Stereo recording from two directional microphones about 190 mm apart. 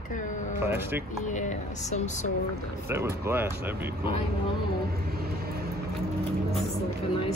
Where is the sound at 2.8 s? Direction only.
15° right (ahead or behind).